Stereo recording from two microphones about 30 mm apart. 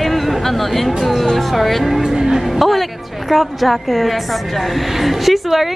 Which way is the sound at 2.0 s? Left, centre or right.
Centre.